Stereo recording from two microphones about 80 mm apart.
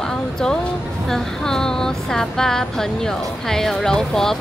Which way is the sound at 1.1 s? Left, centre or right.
Centre.